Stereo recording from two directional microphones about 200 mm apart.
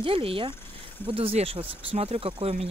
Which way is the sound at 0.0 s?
30° right (ahead or behind).